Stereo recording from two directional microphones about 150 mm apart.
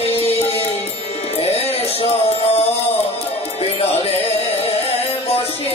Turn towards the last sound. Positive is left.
turn(degrees=40)  # may be behind; listen again after turning